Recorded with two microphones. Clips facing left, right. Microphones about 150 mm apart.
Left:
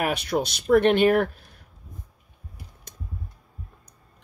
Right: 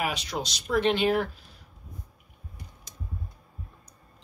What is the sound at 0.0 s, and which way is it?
Speech, 60° left (ahead or behind).